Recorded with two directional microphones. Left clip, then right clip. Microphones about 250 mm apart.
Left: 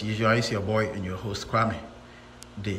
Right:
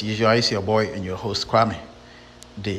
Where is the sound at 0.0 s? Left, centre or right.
Centre.